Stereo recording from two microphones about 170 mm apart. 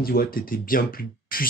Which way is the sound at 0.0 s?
60° left (ahead or behind).